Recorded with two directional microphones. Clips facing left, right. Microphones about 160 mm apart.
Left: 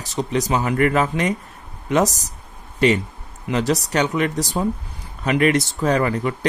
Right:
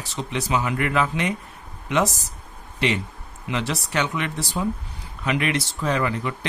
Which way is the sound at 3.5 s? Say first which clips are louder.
Left 7 dB; 40° left (ahead or behind).